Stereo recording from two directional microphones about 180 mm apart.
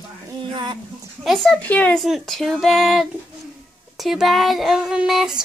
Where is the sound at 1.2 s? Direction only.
Centre (ahead or behind).